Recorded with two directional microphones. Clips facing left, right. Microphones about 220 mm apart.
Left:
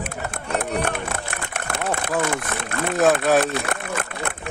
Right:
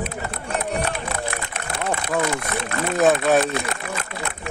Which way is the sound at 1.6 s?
50° left (ahead or behind).